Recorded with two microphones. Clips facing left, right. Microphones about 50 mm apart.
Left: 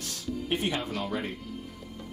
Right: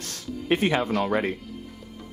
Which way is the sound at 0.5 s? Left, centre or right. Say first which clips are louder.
Right 9 dB; right.